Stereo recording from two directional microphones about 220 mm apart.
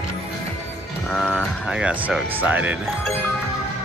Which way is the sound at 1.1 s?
5° left (ahead or behind).